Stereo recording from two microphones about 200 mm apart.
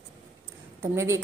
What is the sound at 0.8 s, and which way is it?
Speech, 15° right (ahead or behind).